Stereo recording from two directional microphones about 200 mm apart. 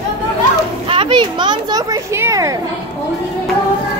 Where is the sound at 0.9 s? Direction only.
25° right (ahead or behind).